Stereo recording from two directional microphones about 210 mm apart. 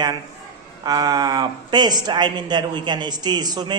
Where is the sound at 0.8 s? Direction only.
20° right (ahead or behind).